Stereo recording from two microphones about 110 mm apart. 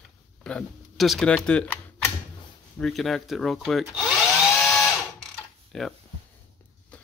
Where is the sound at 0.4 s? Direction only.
10° left (ahead or behind).